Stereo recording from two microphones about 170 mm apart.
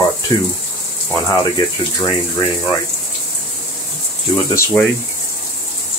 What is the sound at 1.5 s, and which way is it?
Speech, 25° left (ahead or behind).